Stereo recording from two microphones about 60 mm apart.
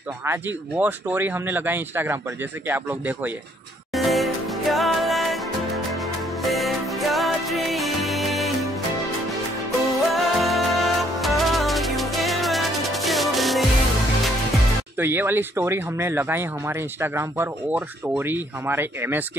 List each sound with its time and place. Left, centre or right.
0.7 s speech: right
3.9 s music: centre
6.4 s music: centre
10.0 s music: centre
15.0 s speech: right
17.6 s speech: right